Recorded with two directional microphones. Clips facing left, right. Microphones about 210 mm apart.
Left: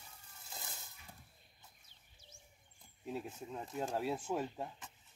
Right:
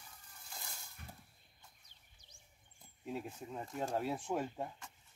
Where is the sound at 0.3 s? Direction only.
25° left (ahead or behind).